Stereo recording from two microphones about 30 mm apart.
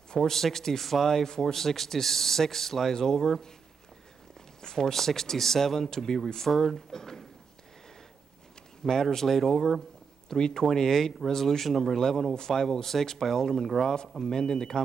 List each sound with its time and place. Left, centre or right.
0.1 s speech: centre
4.6 s speech: centre
9.1 s speech: centre
14.3 s speech: left